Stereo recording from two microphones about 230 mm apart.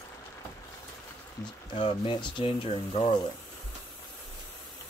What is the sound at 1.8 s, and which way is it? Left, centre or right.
Speech, left.